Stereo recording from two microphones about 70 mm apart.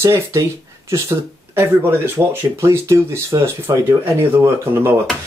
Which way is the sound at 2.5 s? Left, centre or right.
Right.